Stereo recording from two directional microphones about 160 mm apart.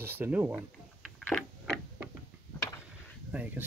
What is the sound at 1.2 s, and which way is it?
Tick-tock, 5° left (ahead or behind).